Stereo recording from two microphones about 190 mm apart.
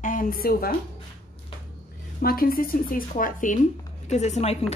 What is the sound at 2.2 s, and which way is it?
A woman's voice, 50° left (ahead or behind).